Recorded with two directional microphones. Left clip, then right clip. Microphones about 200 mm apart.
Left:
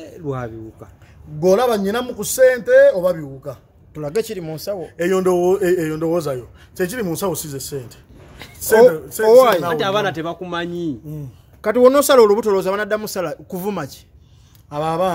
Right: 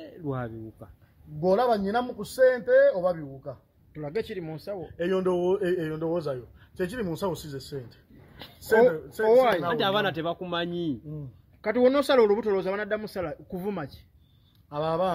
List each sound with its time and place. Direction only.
0.0 s speech: 40° right (ahead or behind)
1.4 s a man's voice: 10° left (ahead or behind)
9.8 s a man's voice: 35° right (ahead or behind)
11.6 s a man's voice: 10° left (ahead or behind)